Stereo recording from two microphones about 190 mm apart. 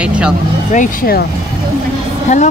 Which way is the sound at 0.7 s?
45° left (ahead or behind).